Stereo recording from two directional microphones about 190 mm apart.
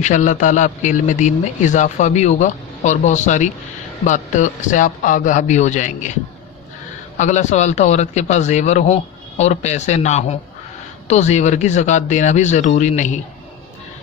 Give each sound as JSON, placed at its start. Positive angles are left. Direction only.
{"t": 0.0, "sound": "a man's voice", "side_deg": 40}
{"t": 7.2, "sound": "a man's voice", "side_deg": 40}